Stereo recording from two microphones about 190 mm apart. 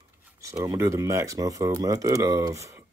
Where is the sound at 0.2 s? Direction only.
15° right (ahead or behind).